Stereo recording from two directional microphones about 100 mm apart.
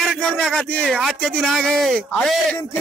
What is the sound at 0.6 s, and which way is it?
Speech, 10° left (ahead or behind).